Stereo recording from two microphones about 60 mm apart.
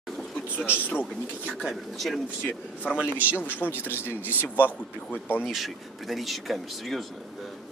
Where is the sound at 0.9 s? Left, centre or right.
Centre.